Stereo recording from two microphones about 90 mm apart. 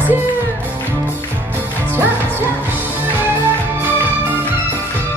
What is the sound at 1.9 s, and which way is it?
Music, 20° right (ahead or behind).